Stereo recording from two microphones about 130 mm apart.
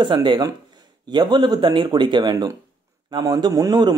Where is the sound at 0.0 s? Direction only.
35° right (ahead or behind).